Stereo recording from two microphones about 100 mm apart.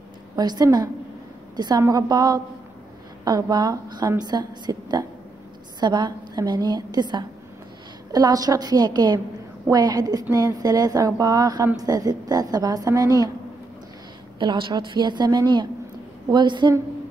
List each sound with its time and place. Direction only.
0.4 s a woman's voice: 40° right (ahead or behind)
14.4 s a woman's voice: 50° right (ahead or behind)